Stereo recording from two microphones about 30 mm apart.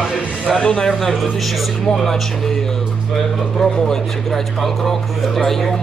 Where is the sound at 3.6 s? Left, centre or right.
Left.